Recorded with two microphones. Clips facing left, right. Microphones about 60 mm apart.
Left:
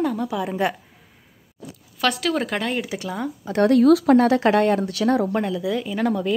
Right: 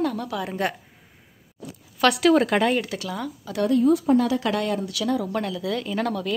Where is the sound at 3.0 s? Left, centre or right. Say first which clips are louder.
Left 3 dB; centre.